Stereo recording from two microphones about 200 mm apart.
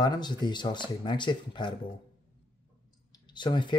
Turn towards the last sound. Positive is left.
turn(degrees=25)  # may be behind; listen again after turning